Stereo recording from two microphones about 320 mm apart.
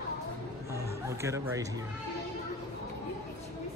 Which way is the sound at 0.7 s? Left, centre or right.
Centre.